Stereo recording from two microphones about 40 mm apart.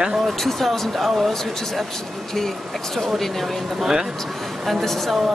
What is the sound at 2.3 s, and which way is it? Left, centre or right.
Speech, centre.